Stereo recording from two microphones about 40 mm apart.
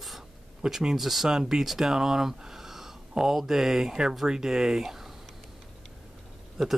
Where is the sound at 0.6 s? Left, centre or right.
Centre.